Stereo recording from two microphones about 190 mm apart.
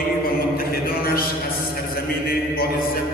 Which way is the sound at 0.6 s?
50° left (ahead or behind).